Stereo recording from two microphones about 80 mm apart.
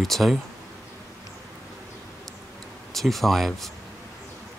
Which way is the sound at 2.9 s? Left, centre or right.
Centre.